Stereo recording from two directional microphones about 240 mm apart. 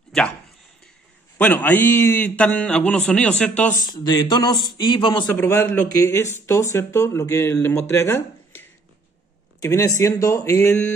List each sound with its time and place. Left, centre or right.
1.4 s a man's voice: centre
3.9 s speech: centre